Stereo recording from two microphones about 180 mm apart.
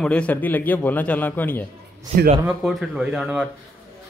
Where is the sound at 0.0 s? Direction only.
5° left (ahead or behind).